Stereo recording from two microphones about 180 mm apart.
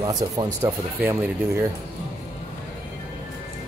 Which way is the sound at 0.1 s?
20° right (ahead or behind).